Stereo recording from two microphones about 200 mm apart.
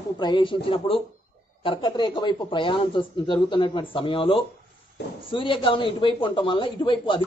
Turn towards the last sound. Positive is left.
turn(degrees=25)  # may be behind; listen again after turning